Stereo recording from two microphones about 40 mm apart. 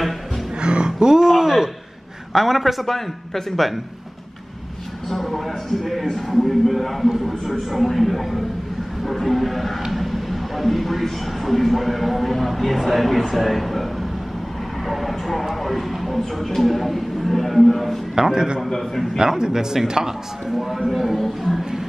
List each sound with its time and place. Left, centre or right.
0.6 s a sound: right
2.3 s speech: centre
2.9 s speech: centre
5.1 s speech: centre
14.9 s vehicle: centre
15.6 s speech: centre
18.1 s a man's voice: centre
18.6 s speech: centre
19.1 s a man's voice: centre